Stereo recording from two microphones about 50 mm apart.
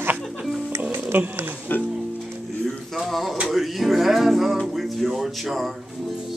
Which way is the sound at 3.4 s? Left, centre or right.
Centre.